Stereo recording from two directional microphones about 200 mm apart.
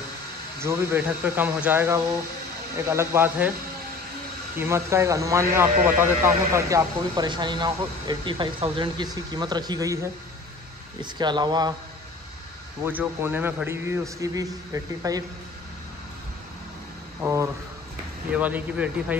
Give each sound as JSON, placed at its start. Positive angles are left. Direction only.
{"t": 0.6, "sound": "speech", "side_deg": -15}
{"t": 4.6, "sound": "speech", "side_deg": -15}
{"t": 12.8, "sound": "speech", "side_deg": -10}
{"t": 17.2, "sound": "speech", "side_deg": -15}